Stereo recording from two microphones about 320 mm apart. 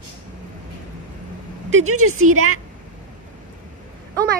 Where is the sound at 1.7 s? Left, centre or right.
Right.